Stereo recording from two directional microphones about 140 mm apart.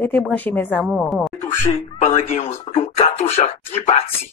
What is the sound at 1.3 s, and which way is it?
Speech, 15° left (ahead or behind).